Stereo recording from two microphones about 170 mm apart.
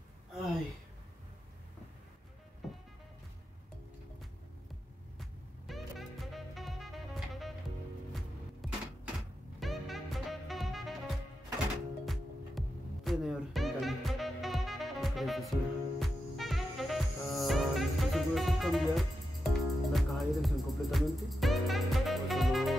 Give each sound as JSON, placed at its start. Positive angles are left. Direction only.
{"t": 5.2, "sound": "music", "side_deg": 0}